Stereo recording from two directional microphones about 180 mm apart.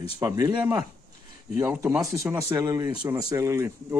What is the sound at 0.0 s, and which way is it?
Speech, 20° right (ahead or behind).